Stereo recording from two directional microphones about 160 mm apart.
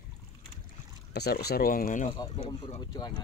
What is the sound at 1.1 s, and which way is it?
Speech, 85° left.